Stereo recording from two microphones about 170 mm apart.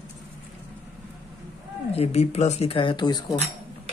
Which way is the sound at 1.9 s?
35° left (ahead or behind).